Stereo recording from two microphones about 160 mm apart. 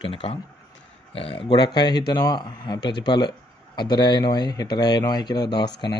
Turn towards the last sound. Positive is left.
turn(degrees=25)  # may be behind; listen again after turning